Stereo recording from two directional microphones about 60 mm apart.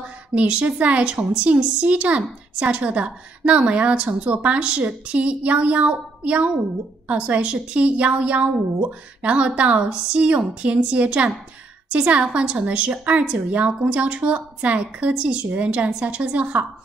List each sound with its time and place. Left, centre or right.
0.3 s a woman's voice: right